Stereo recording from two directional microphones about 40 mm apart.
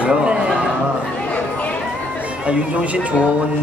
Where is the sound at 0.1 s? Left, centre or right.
Centre.